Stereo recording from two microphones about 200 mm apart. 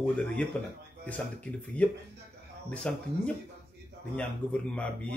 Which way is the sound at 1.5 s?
5° left (ahead or behind).